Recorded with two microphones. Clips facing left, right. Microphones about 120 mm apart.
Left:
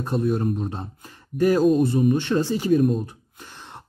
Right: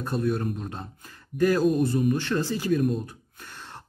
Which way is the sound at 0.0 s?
25° left (ahead or behind).